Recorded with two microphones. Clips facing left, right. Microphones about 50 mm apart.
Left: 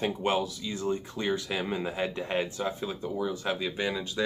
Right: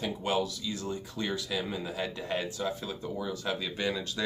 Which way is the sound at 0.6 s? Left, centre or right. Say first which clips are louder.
Left 4 dB; left.